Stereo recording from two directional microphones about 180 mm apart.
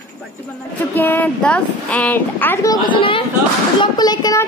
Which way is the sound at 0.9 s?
10° left (ahead or behind).